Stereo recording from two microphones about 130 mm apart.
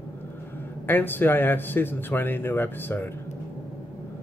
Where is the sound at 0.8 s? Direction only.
15° left (ahead or behind).